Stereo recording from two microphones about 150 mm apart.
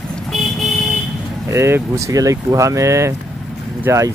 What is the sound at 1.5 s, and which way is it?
Speech, 15° right (ahead or behind).